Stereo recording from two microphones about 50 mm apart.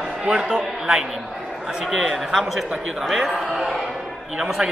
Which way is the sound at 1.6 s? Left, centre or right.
Centre.